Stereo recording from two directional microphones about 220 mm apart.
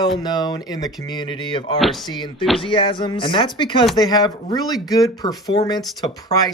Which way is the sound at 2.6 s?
25° left (ahead or behind).